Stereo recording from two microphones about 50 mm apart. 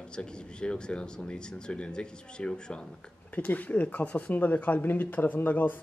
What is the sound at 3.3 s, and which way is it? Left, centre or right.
Speech, left.